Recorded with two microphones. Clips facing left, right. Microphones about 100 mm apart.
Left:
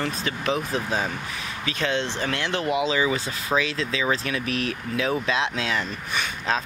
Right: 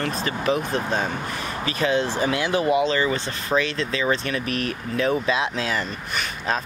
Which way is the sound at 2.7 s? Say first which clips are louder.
Right 2 dB; 5° left (ahead or behind).